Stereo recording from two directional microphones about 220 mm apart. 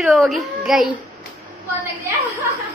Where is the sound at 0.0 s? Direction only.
Centre (ahead or behind).